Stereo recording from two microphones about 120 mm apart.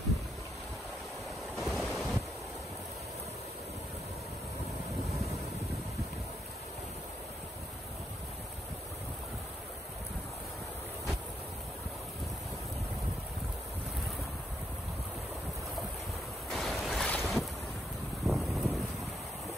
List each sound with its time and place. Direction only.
1.6 s waves: 5° right (ahead or behind)
16.4 s ocean: centre (ahead or behind)
17.2 s boat: centre (ahead or behind)
18.2 s wind noise: centre (ahead or behind)